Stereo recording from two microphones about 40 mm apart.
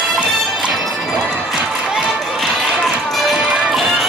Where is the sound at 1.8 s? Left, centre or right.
Centre.